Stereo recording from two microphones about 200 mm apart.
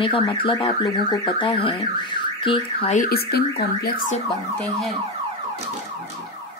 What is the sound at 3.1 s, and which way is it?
Speech, 50° left (ahead or behind).